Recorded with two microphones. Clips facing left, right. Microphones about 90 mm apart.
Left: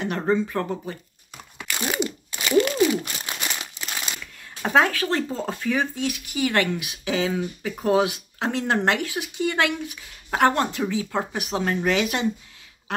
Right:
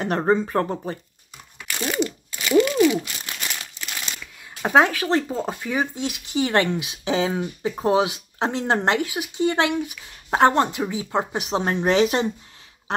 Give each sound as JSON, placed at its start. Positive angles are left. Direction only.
{"t": 0.0, "sound": "speech", "side_deg": -35}
{"t": 1.8, "sound": "crumpling", "side_deg": 15}
{"t": 4.6, "sound": "speech", "side_deg": -20}